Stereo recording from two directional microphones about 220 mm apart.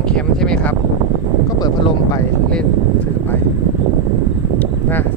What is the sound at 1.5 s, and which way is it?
Speech, 15° left (ahead or behind).